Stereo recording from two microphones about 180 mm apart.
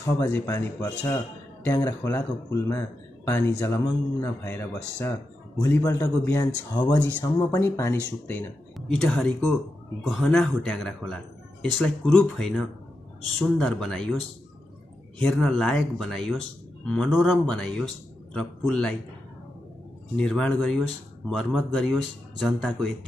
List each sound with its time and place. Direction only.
0.5 s speech: 15° left (ahead or behind)
8.7 s speech: centre (ahead or behind)
15.1 s speech: 5° left (ahead or behind)
20.2 s speech: 5° left (ahead or behind)